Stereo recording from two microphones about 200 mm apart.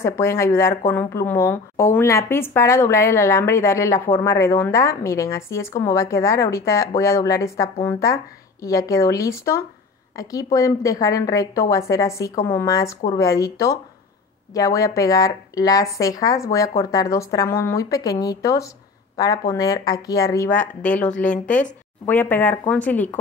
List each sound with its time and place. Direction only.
0.0 s a woman's voice: 15° left (ahead or behind)